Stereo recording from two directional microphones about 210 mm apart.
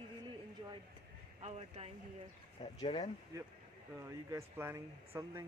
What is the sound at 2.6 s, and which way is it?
Speech, 20° left (ahead or behind).